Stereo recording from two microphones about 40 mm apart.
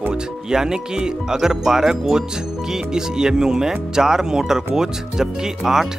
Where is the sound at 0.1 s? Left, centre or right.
Centre.